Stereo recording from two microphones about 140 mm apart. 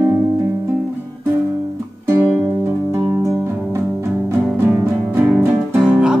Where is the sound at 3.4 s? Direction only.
20° right (ahead or behind).